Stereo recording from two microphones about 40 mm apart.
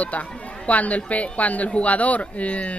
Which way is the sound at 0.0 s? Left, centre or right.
Left.